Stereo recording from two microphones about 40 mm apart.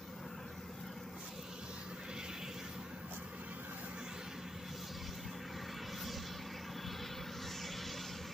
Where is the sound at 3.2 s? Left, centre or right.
Right.